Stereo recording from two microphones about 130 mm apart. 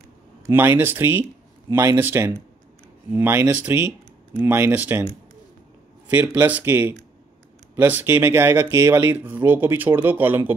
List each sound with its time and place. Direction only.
0.5 s speech: 15° right (ahead or behind)
6.0 s speech: 10° right (ahead or behind)